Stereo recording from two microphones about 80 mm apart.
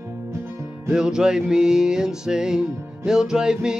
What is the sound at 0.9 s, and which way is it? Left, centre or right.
Music, centre.